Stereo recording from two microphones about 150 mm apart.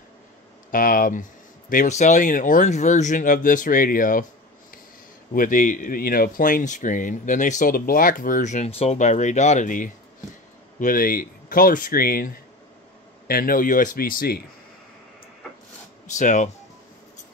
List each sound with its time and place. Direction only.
0.7 s speech: 70° left (ahead or behind)
1.7 s speech: 55° left (ahead or behind)
10.8 s speech: 70° left (ahead or behind)
16.2 s speech: 55° left (ahead or behind)